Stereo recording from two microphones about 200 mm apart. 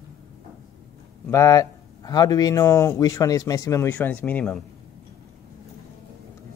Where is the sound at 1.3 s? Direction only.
15° left (ahead or behind).